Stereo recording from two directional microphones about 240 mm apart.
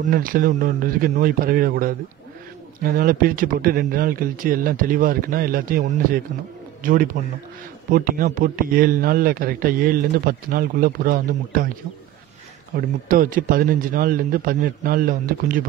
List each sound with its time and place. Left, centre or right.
0.0 s a man's voice: right
12.7 s speech: right